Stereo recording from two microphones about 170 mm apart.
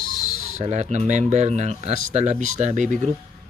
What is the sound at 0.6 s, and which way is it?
Speech, 40° right (ahead or behind).